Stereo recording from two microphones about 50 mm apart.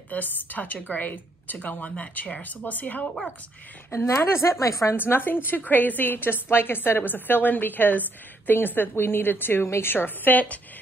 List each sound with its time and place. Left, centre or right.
0.1 s speech: left
3.9 s speech: left
4.9 s a woman's voice: left